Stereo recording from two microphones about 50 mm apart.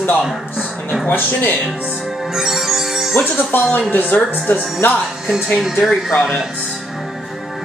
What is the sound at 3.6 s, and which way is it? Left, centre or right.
Speech, left.